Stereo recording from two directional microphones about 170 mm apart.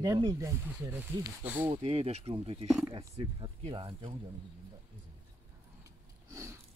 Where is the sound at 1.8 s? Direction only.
35° right (ahead or behind).